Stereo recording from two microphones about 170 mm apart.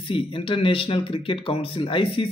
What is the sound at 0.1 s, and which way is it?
A man's voice, 30° left (ahead or behind).